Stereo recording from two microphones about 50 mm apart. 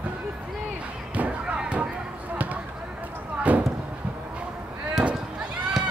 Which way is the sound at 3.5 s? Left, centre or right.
Right.